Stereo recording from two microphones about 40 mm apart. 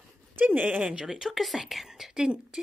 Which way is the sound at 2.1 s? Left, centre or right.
Right.